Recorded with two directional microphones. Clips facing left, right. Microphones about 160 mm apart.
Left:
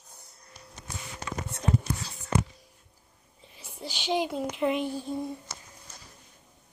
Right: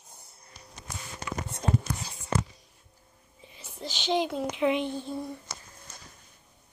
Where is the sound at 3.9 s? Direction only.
10° left (ahead or behind).